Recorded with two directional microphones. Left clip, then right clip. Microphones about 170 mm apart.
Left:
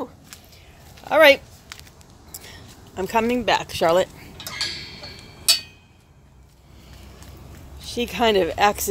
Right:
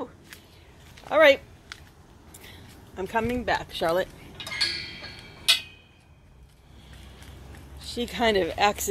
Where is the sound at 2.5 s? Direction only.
20° left (ahead or behind).